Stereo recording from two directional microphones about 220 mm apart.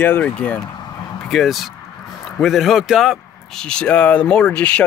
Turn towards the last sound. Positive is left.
turn(degrees=5)  # may be behind; listen again after turning